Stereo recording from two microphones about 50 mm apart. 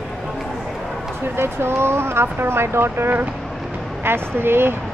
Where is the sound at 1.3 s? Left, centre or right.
Right.